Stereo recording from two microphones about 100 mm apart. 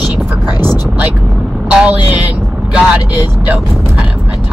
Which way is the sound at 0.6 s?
20° right (ahead or behind).